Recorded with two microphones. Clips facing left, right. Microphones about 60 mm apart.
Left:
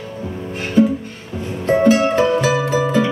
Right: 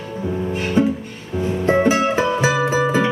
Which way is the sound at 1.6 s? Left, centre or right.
Centre.